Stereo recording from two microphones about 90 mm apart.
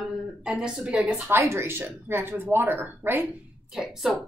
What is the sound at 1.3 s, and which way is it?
Speech, 30° right (ahead or behind).